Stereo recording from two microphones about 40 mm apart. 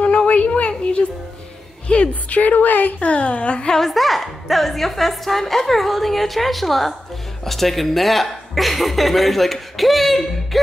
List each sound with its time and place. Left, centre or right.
0.0 s a sound: left
1.9 s a woman's voice: left
3.7 s a woman's voice: centre